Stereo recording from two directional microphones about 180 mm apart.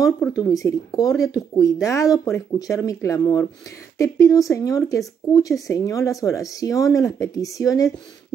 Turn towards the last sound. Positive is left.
turn(degrees=20)  # may be behind; listen again after turning